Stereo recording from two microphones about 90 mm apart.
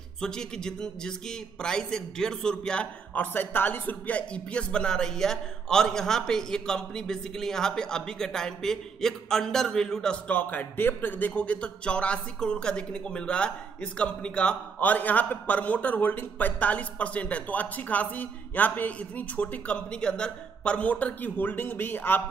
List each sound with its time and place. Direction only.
0.2 s a man's voice: 10° left (ahead or behind)
10.2 s a man's voice: 20° left (ahead or behind)